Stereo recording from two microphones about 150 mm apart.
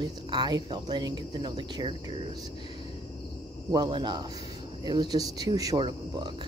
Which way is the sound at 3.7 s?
30° right (ahead or behind).